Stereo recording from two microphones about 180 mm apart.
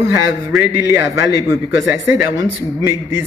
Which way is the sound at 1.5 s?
15° right (ahead or behind).